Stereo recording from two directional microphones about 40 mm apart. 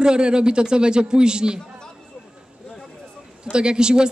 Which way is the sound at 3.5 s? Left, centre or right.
Right.